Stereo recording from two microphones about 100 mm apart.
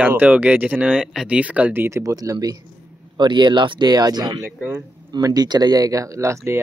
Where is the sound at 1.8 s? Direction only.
30° right (ahead or behind).